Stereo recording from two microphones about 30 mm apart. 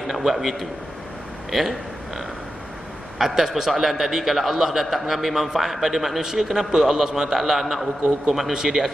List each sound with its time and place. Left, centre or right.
0.0 s a man's voice: centre
1.5 s a sound: centre
3.2 s a man's voice: centre
8.5 s a man's voice: centre